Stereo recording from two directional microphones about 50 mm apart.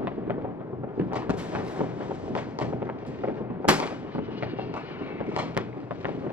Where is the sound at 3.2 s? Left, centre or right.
Right.